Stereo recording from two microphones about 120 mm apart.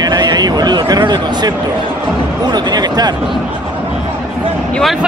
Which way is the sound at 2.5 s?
35° right (ahead or behind).